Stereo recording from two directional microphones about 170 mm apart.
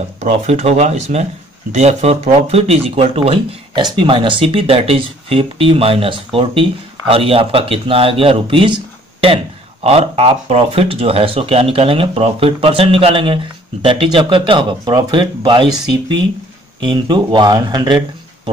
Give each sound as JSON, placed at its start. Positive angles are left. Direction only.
{"t": 0.2, "sound": "speech", "side_deg": -40}